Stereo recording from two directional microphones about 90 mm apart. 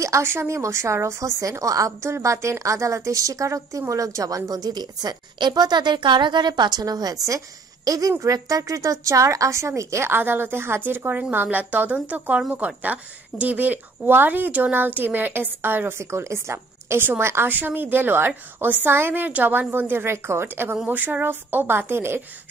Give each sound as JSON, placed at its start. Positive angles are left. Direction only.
{"t": 0.0, "sound": "a woman's voice", "side_deg": -30}